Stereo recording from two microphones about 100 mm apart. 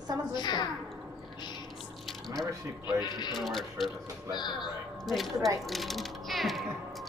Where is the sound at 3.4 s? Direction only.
Centre (ahead or behind).